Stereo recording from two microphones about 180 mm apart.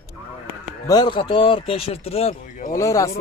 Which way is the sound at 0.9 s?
25° left (ahead or behind).